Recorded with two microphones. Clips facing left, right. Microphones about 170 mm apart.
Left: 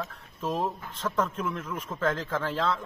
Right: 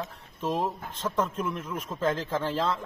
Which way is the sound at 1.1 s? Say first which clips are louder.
Even; 20° right (ahead or behind).